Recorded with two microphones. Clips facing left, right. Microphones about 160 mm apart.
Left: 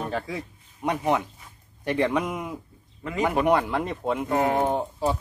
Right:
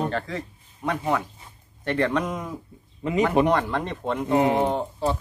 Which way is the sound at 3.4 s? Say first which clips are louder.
Left 1 dB; 5° left (ahead or behind).